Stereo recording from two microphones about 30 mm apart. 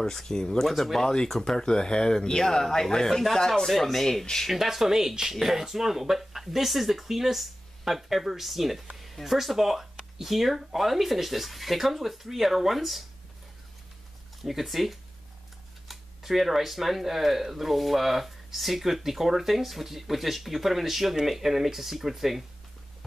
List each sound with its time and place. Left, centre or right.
0.0 s speech: centre
3.6 s speech: centre
4.5 s speech: centre
14.4 s speech: centre